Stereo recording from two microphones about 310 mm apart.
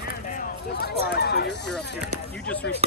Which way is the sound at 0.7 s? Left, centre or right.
Left.